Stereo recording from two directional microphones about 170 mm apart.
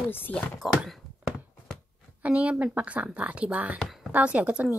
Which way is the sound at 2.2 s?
10° right (ahead or behind).